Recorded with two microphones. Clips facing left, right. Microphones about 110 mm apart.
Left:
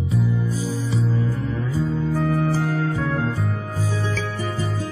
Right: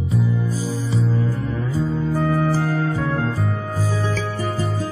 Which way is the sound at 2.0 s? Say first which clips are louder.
Right 2 dB; 45° right (ahead or behind).